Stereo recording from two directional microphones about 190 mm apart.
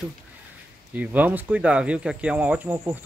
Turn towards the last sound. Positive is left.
turn(degrees=-10)  # may be behind; listen again after turning